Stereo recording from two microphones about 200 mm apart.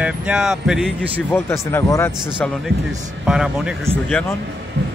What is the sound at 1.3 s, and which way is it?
Speech, 10° left (ahead or behind).